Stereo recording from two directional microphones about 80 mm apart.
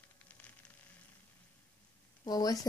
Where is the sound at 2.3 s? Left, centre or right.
Left.